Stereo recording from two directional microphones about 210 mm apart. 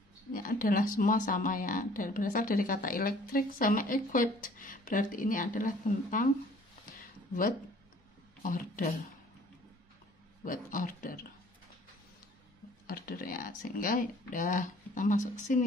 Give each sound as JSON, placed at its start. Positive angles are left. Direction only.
{"t": 0.3, "sound": "speech", "side_deg": 40}
{"t": 8.4, "sound": "speech", "side_deg": 40}
{"t": 10.4, "sound": "speech", "side_deg": 40}
{"t": 12.8, "sound": "speech", "side_deg": 45}